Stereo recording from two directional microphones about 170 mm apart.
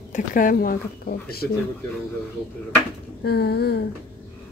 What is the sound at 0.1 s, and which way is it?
A woman's voice, 50° left (ahead or behind).